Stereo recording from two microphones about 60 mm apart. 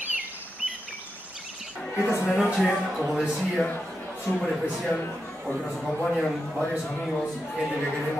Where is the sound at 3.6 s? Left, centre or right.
Left.